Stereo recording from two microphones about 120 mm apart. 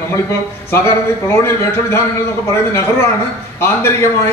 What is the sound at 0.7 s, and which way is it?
A man's voice, 20° left (ahead or behind).